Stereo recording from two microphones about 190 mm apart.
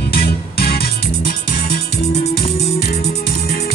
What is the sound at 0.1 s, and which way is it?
Music, 55° left (ahead or behind).